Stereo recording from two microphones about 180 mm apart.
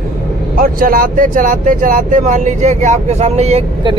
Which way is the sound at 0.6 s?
50° right (ahead or behind).